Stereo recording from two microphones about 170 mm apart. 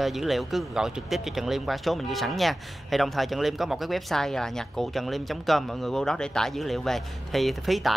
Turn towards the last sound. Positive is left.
turn(degrees=0)  # may be behind; listen again after turning